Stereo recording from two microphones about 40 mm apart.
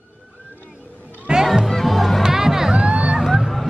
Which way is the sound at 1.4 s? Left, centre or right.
Centre.